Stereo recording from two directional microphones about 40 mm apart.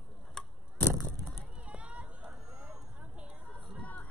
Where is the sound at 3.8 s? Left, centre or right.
Left.